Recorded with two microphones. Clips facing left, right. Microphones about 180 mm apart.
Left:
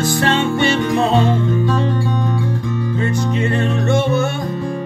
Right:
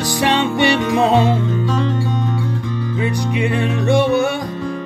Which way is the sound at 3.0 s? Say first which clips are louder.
Right 1 dB; 15° right (ahead or behind).